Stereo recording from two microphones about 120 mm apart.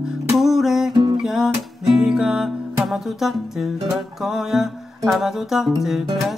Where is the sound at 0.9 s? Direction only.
40° right (ahead or behind).